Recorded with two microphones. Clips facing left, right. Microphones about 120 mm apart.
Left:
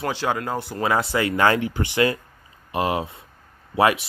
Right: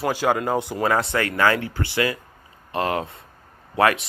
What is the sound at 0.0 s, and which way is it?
Speech, 10° right (ahead or behind).